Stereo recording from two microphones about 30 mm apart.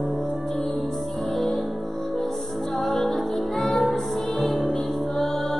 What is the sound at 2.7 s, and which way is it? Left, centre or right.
Music, centre.